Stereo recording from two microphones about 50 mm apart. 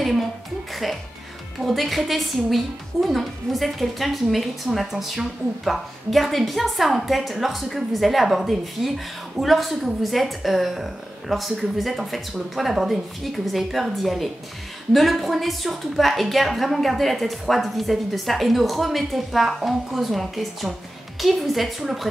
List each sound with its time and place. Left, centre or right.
0.8 s a woman's voice: centre